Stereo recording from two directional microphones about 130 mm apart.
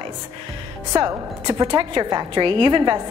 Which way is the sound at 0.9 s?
25° right (ahead or behind).